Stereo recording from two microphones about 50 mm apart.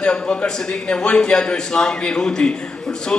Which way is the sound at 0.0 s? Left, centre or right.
Left.